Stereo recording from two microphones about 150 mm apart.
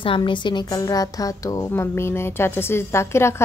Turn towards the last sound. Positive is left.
turn(degrees=15)  # may be behind; listen again after turning